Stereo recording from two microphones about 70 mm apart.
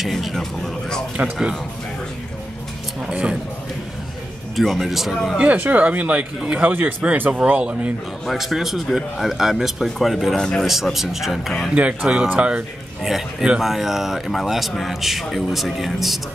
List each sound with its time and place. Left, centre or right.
0.0 s a man's voice: centre
3.1 s speech: centre
4.6 s a man's voice: centre
5.4 s speech: right
8.3 s a man's voice: centre
10.7 s a man's voice: centre
11.7 s speech: centre
13.0 s a man's voice: centre